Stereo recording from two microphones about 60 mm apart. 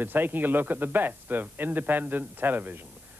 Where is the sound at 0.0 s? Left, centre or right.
Right.